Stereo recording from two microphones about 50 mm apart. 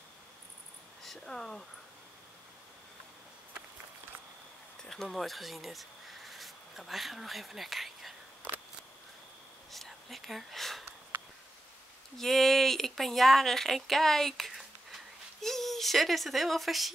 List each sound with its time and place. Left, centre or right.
1.0 s speech: centre
5.0 s speech: centre
9.7 s whispering: centre
12.2 s speech: centre
14.5 s a sound: centre
15.4 s speech: centre